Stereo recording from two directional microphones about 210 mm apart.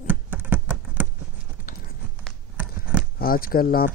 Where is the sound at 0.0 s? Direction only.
5° right (ahead or behind).